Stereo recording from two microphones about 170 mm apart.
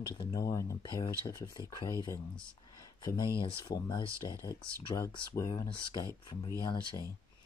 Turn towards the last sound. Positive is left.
turn(degrees=25)  # may be behind; listen again after turning